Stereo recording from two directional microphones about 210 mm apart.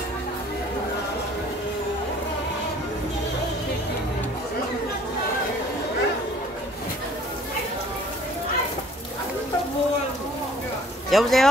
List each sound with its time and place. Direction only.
11.1 s speech: centre (ahead or behind)